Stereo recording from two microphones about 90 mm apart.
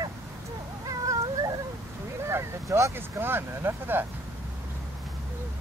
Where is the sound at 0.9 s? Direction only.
40° right (ahead or behind).